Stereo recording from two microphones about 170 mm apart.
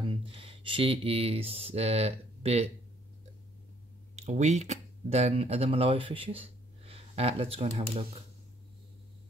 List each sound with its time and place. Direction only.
0.0 s speech: 30° right (ahead or behind)
4.1 s speech: 40° right (ahead or behind)